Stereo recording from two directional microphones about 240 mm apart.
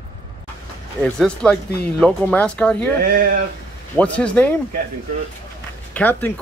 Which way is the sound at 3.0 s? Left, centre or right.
Right.